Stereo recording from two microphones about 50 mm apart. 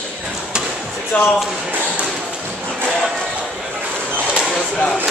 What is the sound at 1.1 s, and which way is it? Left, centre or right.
Speech, left.